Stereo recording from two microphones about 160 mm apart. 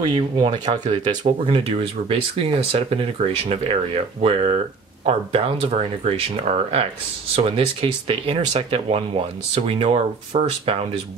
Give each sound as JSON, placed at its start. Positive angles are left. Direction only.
{"t": 0.0, "sound": "speech", "side_deg": -30}